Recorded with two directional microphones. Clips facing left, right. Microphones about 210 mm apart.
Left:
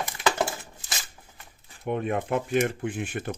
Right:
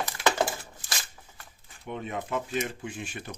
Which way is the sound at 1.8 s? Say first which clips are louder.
Left 7 dB; 55° left (ahead or behind).